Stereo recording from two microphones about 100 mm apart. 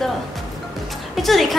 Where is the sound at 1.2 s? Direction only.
Centre (ahead or behind).